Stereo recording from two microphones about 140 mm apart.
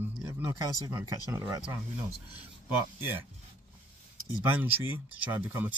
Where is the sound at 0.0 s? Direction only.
20° right (ahead or behind).